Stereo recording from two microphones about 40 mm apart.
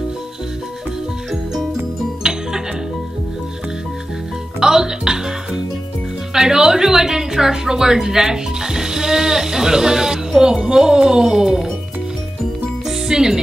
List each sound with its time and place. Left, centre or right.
1.3 s music: centre
4.6 s music: centre
6.3 s a woman's voice: centre
12.8 s music: centre